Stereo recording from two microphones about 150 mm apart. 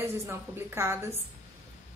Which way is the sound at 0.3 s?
15° right (ahead or behind).